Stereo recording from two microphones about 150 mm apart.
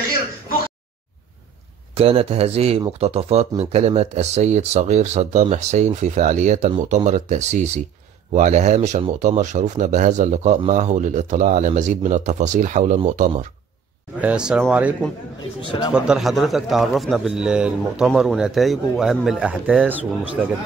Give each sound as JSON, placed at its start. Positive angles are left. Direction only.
{"t": 2.0, "sound": "speech", "side_deg": -40}
{"t": 14.2, "sound": "speech", "side_deg": -5}